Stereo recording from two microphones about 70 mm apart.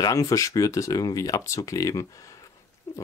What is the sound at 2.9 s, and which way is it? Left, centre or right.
Pig, left.